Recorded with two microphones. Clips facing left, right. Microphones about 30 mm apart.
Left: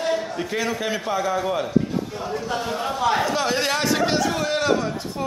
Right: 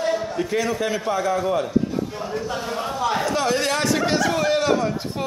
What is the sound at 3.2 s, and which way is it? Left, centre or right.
A man's voice, centre.